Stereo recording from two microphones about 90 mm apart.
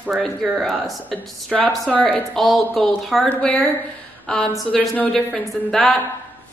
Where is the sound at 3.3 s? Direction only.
15° left (ahead or behind).